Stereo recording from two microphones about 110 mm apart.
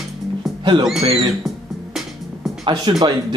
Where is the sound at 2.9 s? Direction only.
50° right (ahead or behind).